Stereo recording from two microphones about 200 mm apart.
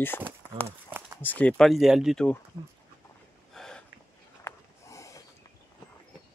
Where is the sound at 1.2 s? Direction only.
5° left (ahead or behind).